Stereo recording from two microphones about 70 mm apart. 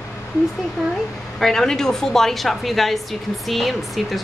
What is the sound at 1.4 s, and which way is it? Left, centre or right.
Speech, centre.